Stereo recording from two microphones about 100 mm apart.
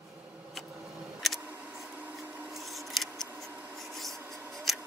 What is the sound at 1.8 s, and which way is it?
Vacuum cleaner, 15° right (ahead or behind).